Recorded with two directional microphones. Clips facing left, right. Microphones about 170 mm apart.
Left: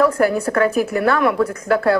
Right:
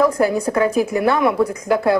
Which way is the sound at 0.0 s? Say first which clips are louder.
Even; 15° right (ahead or behind).